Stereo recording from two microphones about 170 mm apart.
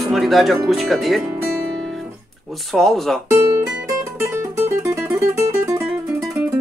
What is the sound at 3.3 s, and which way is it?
Music, 15° right (ahead or behind).